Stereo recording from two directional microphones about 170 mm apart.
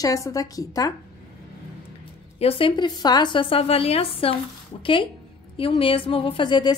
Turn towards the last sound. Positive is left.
turn(degrees=25)  # may be behind; listen again after turning